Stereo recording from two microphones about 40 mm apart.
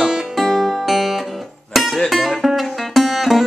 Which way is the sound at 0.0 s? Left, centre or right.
Centre.